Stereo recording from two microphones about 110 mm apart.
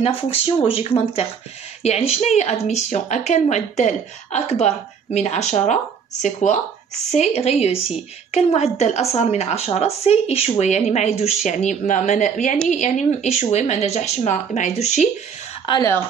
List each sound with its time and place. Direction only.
0.0 s speech: 60° left (ahead or behind); by 5.8 s 90° left
7.1 s a woman's voice: 85° left; by 10.5 s 70° left (ahead or behind)
10.6 s speech: 90° left